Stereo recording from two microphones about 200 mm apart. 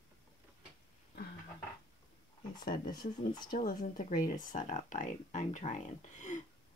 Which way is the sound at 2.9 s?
20° left (ahead or behind).